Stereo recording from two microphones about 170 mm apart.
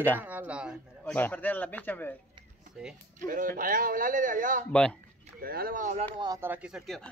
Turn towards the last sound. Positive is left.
turn(degrees=-5)  # may be behind; listen again after turning